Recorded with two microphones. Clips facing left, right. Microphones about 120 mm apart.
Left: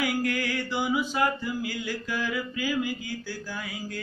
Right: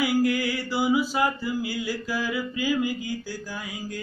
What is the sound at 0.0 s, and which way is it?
Mantra, 10° right (ahead or behind).